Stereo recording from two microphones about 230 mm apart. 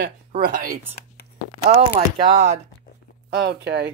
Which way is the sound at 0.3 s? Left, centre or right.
Right.